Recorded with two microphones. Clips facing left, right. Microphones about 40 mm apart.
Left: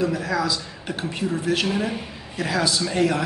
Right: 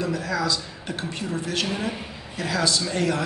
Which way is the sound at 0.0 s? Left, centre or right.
Centre.